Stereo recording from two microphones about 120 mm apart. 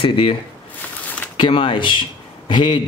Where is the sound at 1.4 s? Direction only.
50° left (ahead or behind).